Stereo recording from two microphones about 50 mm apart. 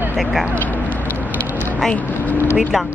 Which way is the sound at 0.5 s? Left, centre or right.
Left.